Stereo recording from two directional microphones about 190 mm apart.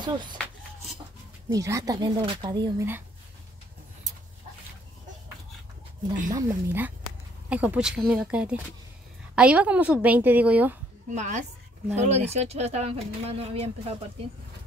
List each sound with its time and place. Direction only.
0.0 s speech: 25° right (ahead or behind)
1.5 s speech: 15° right (ahead or behind)
6.3 s a woman's voice: 10° right (ahead or behind)
11.1 s speech: 40° right (ahead or behind)